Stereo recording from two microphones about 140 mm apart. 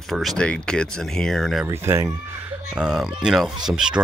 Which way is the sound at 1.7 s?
20° right (ahead or behind).